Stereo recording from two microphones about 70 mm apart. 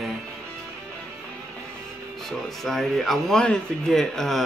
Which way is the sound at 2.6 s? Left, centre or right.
Centre.